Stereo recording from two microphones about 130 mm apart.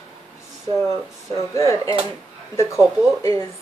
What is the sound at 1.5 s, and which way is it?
Speech, 25° left (ahead or behind).